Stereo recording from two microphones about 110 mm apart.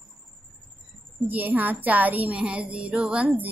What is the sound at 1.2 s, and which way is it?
A woman's voice, 15° right (ahead or behind).